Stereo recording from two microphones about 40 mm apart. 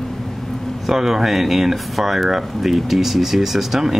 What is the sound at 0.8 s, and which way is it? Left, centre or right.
Speech, centre.